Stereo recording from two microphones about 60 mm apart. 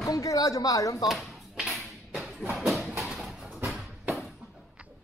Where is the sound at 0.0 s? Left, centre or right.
Left.